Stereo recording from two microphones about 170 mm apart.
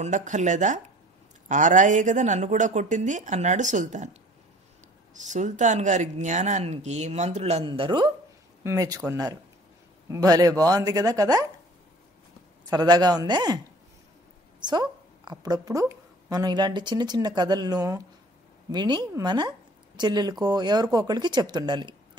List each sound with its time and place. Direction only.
0.0 s a woman's voice: 45° right (ahead or behind)
5.3 s speech: 45° right (ahead or behind); by 11.4 s 20° right (ahead or behind)
12.6 s speech: 25° right (ahead or behind)
14.6 s a woman's voice: 25° right (ahead or behind)